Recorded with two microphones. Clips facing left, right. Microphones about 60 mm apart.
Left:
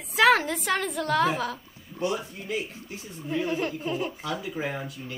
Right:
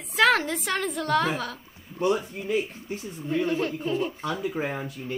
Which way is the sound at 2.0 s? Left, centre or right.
Right.